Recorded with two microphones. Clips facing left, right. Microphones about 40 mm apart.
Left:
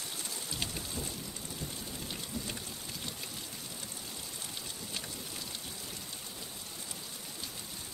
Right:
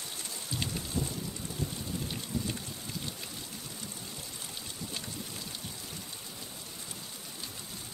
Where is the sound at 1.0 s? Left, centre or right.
Right.